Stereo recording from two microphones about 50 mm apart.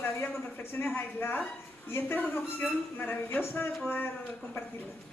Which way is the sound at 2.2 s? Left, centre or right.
Left.